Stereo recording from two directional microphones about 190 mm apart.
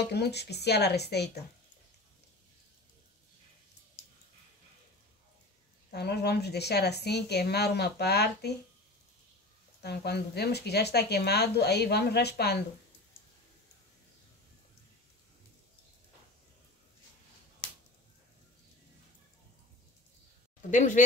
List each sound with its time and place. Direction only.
0.0 s speech: 60° left (ahead or behind)
5.9 s speech: 60° left (ahead or behind)
9.8 s speech: 60° left (ahead or behind)
20.7 s speech: 40° left (ahead or behind)